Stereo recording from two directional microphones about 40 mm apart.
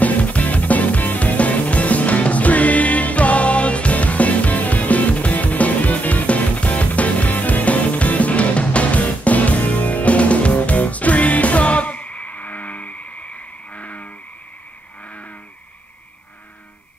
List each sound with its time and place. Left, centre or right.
0.0 s music: left
13.7 s vehicle: left